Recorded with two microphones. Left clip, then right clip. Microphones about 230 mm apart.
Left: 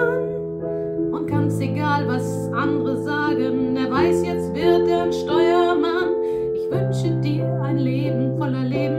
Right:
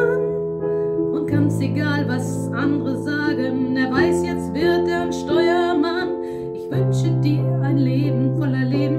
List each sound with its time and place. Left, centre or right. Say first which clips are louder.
3.7 s music: right 2 dB; centre